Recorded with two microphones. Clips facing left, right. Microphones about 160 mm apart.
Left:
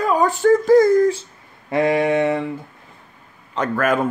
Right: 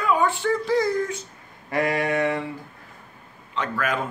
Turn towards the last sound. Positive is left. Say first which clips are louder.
# left 7 dB
turn(degrees=50)  # may be behind; listen again after turning